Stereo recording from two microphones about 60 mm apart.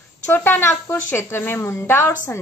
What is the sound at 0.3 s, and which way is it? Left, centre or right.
Speech, left.